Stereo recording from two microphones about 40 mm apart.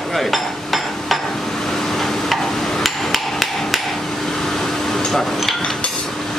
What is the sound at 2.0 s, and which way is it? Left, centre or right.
Hammer, centre.